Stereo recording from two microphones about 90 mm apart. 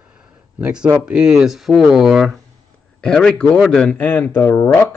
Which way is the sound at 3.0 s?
10° left (ahead or behind).